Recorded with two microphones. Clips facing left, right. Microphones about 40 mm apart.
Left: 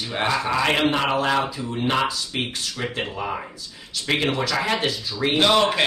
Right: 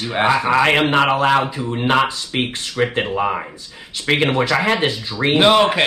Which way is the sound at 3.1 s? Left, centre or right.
Right.